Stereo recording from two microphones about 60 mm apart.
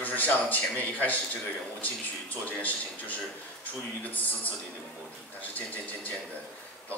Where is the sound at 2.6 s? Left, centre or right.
Left.